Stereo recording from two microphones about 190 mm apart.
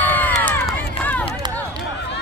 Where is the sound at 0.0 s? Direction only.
10° left (ahead or behind).